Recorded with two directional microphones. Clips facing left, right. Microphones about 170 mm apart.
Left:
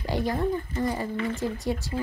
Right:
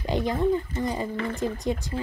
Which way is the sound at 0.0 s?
20° right (ahead or behind).